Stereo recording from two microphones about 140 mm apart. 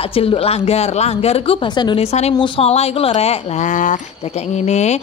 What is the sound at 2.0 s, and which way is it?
A woman's voice, 50° left (ahead or behind).